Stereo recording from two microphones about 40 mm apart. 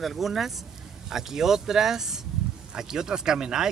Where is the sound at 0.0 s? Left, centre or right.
Centre.